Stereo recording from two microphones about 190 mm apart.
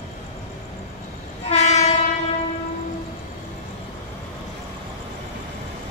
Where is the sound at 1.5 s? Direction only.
35° left (ahead or behind).